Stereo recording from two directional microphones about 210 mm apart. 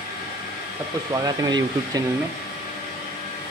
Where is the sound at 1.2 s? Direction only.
20° right (ahead or behind).